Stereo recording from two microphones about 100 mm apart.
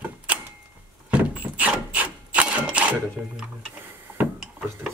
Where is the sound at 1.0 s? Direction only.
15° right (ahead or behind).